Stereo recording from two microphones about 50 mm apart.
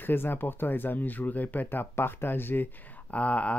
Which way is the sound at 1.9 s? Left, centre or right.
Left.